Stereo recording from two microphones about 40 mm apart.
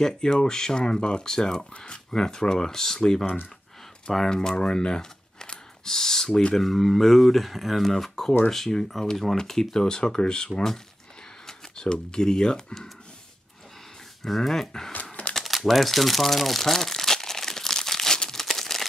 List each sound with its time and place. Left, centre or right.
0.0 s speech: centre
4.3 s speech: centre
7.9 s speech: centre
11.4 s speech: centre
14.2 s speech: centre
15.3 s crumpling: centre
18.4 s a sound: centre